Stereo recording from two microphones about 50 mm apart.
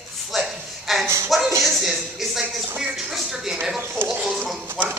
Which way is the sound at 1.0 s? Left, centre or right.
Right.